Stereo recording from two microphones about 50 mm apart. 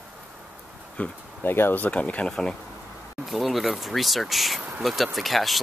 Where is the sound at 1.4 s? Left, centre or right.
Left.